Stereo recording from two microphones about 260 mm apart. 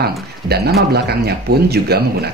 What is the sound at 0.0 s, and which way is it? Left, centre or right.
Speech, right.